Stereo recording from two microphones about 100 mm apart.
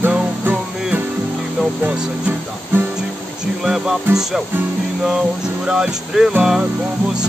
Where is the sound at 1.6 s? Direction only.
15° right (ahead or behind).